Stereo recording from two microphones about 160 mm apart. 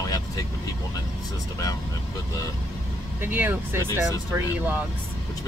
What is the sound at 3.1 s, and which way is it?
Speech, 10° right (ahead or behind).